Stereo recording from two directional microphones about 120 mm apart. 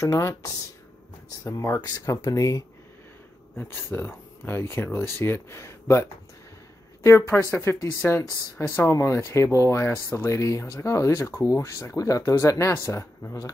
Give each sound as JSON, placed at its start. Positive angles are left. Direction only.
{"t": 0.0, "sound": "speech", "side_deg": 25}
{"t": 1.4, "sound": "speech", "side_deg": 25}
{"t": 3.5, "sound": "speech", "side_deg": 15}